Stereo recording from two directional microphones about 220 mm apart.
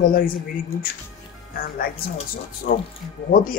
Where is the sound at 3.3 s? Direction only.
40° left (ahead or behind).